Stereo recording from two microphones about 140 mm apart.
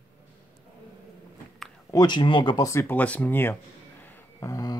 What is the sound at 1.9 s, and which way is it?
Speech, 30° left (ahead or behind).